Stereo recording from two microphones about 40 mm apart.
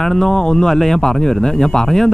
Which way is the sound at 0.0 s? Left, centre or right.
Centre.